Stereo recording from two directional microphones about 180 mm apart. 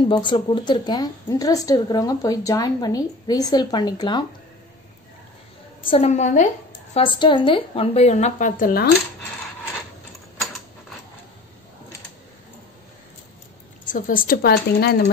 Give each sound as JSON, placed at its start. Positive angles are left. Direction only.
{"t": 0.0, "sound": "a woman's voice", "side_deg": 25}
{"t": 5.9, "sound": "a woman's voice", "side_deg": 35}
{"t": 7.0, "sound": "speech", "side_deg": 30}
{"t": 13.8, "sound": "speech", "side_deg": 50}